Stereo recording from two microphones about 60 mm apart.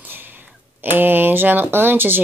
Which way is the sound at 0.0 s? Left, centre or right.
Right.